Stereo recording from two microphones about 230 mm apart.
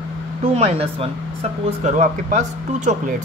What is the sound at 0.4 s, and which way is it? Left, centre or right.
Speech, right.